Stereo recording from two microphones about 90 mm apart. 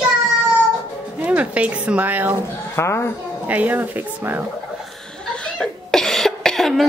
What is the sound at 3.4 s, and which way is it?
Speech, 20° right (ahead or behind).